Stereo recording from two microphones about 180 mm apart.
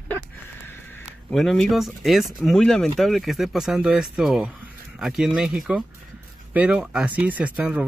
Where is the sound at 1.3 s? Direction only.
Centre (ahead or behind).